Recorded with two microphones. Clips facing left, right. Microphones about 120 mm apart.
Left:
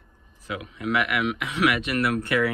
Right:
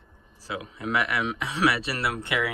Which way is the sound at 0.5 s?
30° right (ahead or behind).